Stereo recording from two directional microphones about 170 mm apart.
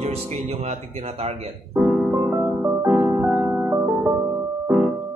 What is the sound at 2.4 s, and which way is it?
Music, 5° right (ahead or behind).